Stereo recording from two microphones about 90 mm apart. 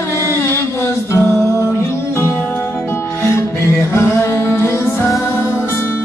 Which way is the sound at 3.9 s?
30° left (ahead or behind).